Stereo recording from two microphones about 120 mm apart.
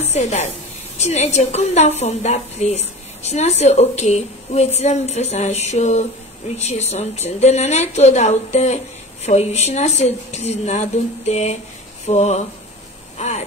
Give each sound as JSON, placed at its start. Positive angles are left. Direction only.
{"t": 0.0, "sound": "a woman's voice", "side_deg": 70}